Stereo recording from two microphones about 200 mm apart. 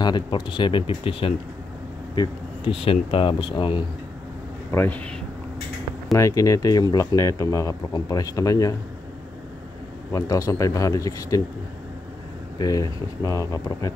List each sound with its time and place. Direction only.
0.0 s speech: 25° left (ahead or behind)
2.8 s speech: 30° left (ahead or behind)
4.6 s speech: 10° left (ahead or behind)
6.1 s speech: 15° left (ahead or behind)
10.1 s speech: 15° left (ahead or behind)
12.5 s speech: 20° left (ahead or behind)